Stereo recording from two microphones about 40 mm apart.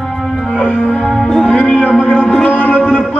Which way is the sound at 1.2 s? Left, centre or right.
Centre.